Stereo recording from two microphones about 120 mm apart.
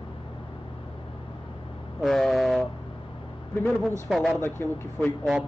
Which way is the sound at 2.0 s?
5° left (ahead or behind).